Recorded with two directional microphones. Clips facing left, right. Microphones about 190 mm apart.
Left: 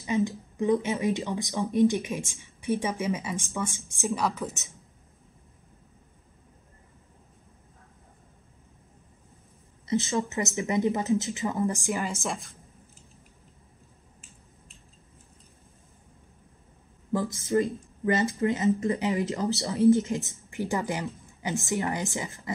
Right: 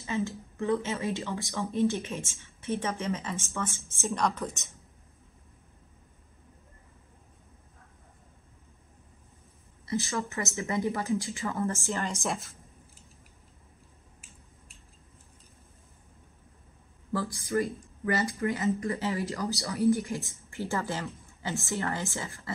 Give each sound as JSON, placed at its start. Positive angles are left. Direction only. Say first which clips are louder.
{"t": 0.0, "sound": "a woman's voice", "louder": "left 5 dB", "side_deg": 15}
{"t": 9.8, "sound": "speech", "louder": "left 5 dB", "side_deg": 20}
{"t": 12.0, "sound": "a woman's voice", "louder": "left 1 dB", "side_deg": 0}
{"t": 17.1, "sound": "speech", "louder": "left 4 dB", "side_deg": 20}